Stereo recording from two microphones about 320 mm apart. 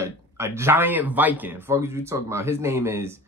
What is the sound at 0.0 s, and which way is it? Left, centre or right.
Speech, centre.